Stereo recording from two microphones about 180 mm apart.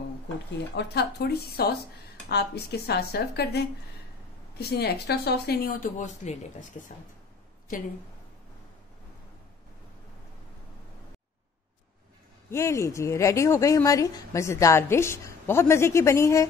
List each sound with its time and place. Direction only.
0.7 s speech: 65° left (ahead or behind); by 6.3 s 45° left (ahead or behind)
12.4 s speech: 15° left (ahead or behind)